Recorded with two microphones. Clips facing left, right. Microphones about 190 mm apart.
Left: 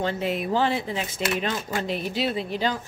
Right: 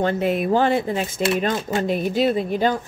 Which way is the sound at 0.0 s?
50° right (ahead or behind).